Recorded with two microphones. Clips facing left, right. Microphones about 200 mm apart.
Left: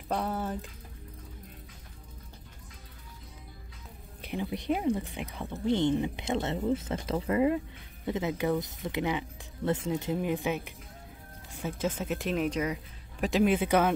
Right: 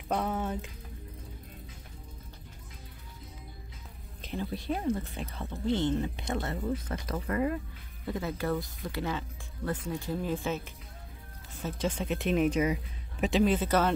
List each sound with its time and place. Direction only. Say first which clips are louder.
0.1 s speech: right 1 dB; centre (ahead or behind)
4.2 s speech: left 1 dB; 15° left (ahead or behind); by 12.7 s 5° right (ahead or behind)
13.2 s speech: left 1 dB; 5° left (ahead or behind)